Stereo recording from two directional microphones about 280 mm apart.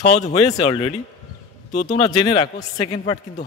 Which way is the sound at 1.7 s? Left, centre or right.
Left.